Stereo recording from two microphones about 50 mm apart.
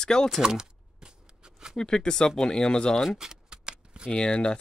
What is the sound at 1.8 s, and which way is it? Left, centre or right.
Speech, centre.